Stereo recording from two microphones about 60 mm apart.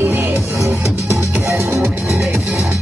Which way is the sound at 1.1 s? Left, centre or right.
Right.